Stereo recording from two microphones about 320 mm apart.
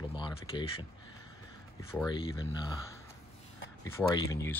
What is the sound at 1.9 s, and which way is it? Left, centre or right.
Speech, centre.